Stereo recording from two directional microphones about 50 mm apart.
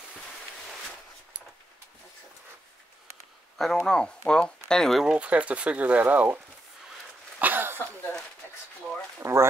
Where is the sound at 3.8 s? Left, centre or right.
Centre.